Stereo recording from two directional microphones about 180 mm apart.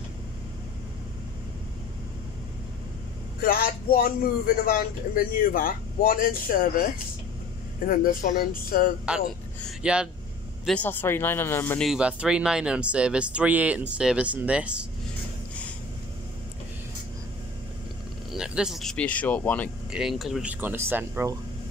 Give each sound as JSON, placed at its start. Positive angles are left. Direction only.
{"t": 3.3, "sound": "a man's voice", "side_deg": 55}
{"t": 7.8, "sound": "a man's voice", "side_deg": 50}
{"t": 9.7, "sound": "speech", "side_deg": -5}
{"t": 10.6, "sound": "speech", "side_deg": 5}
{"t": 11.9, "sound": "speech", "side_deg": -5}
{"t": 18.3, "sound": "speech", "side_deg": -5}
{"t": 19.9, "sound": "speech", "side_deg": -5}